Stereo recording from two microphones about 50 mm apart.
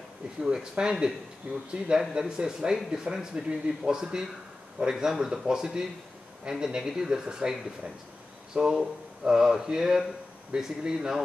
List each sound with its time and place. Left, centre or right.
0.4 s speech: centre
8.5 s speech: centre